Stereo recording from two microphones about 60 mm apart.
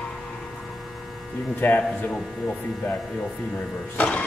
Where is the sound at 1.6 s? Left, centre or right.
Left.